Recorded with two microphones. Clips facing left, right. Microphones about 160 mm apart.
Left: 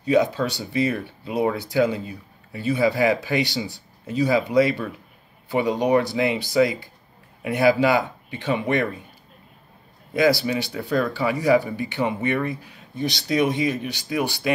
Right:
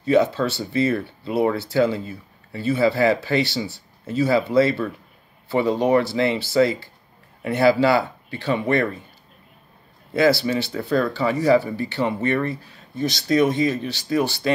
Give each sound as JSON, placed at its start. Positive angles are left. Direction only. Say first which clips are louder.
{"t": 0.0, "sound": "speech", "louder": "right 2 dB", "side_deg": 15}
{"t": 10.1, "sound": "speech", "louder": "right 1 dB", "side_deg": 15}